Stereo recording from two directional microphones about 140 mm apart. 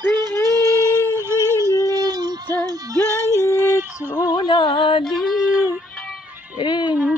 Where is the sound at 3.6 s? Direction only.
15° right (ahead or behind).